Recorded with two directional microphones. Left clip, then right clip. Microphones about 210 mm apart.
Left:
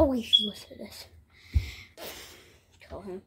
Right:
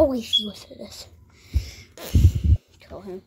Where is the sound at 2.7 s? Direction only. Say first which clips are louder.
Right 4 dB; 15° right (ahead or behind).